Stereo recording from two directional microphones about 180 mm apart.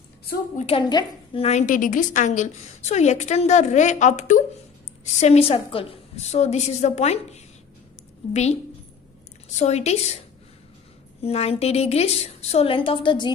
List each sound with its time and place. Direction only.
0.6 s a woman's voice: 30° left (ahead or behind)
9.6 s a woman's voice: 40° left (ahead or behind)